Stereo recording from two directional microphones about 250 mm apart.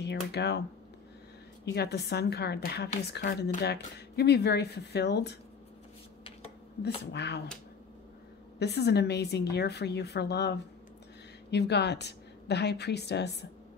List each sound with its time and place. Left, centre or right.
0.0 s speech: left
1.7 s speech: left
7.1 s speech: left
8.5 s speech: left